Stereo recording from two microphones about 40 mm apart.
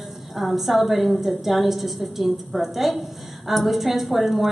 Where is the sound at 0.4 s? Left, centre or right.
Centre.